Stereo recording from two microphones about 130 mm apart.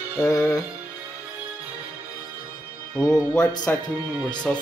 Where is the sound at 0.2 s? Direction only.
30° left (ahead or behind).